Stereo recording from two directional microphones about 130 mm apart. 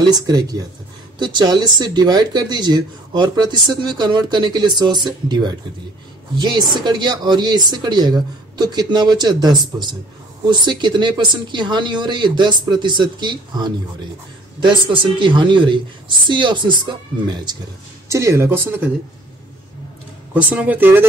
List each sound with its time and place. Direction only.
0.1 s speech: 30° right (ahead or behind)
14.9 s speech: 40° right (ahead or behind)
18.0 s speech: 20° right (ahead or behind)
20.3 s speech: 10° right (ahead or behind)